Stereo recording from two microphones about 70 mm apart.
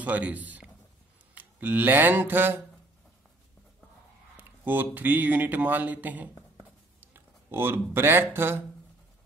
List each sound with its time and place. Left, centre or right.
0.0 s a man's voice: right
1.3 s mantra: right
4.4 s a sound: right
4.9 s speech: right